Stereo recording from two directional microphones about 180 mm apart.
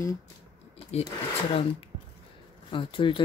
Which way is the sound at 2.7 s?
30° left (ahead or behind).